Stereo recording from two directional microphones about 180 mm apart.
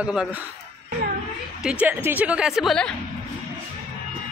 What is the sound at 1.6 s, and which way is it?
Speech, 5° right (ahead or behind).